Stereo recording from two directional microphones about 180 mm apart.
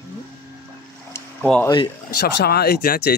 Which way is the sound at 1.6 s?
25° left (ahead or behind).